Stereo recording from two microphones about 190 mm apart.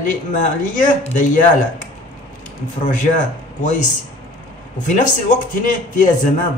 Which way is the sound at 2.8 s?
40° left (ahead or behind).